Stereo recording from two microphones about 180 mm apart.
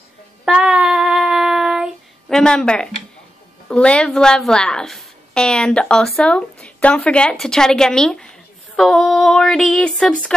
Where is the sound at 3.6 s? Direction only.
5° left (ahead or behind).